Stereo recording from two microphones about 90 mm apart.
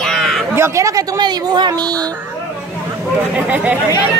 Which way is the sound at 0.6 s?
35° right (ahead or behind).